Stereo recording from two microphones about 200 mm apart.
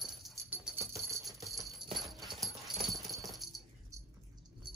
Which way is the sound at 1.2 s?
Centre (ahead or behind).